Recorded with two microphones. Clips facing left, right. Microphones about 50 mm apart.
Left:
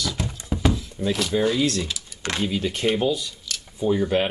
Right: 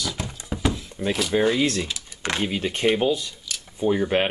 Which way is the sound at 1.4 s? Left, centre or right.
Centre.